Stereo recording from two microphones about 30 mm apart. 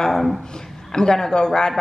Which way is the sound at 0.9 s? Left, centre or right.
Centre.